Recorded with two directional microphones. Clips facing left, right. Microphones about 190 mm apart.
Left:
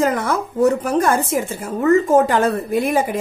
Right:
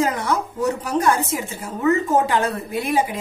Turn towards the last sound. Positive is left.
turn(degrees=50)  # may be behind; listen again after turning